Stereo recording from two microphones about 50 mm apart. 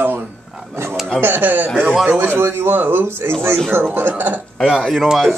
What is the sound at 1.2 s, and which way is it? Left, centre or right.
A man's voice, right.